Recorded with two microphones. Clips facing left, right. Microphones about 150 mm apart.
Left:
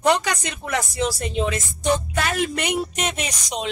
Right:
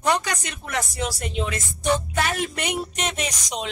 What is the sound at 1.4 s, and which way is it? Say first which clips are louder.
Speech: left 2 dB; 20° left (ahead or behind).